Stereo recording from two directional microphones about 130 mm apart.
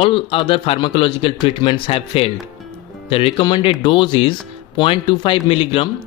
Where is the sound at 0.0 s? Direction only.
45° left (ahead or behind).